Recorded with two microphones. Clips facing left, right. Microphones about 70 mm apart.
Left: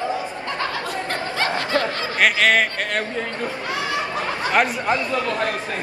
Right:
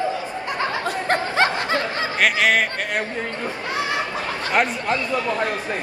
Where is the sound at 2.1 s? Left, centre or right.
Centre.